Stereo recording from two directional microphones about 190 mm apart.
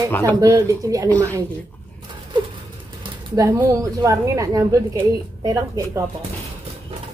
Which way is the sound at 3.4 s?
15° right (ahead or behind).